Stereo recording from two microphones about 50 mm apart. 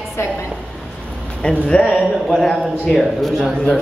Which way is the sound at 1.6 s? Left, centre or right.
Centre.